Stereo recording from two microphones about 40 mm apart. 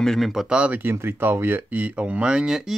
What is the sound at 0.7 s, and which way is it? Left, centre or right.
Speech, right.